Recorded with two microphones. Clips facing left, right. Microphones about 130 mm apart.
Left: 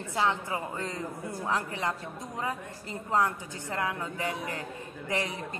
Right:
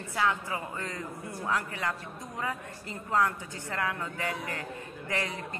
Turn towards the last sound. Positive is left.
turn(degrees=20)  # may be behind; listen again after turning